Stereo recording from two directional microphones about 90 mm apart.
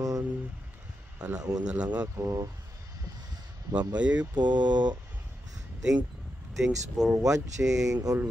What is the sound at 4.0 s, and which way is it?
Speech, 15° right (ahead or behind).